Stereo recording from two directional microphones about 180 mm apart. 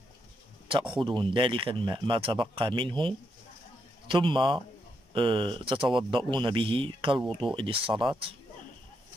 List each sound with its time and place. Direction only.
0.7 s speech: 30° right (ahead or behind)